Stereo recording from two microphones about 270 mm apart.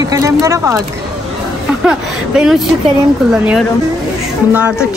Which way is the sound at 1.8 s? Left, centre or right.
Centre.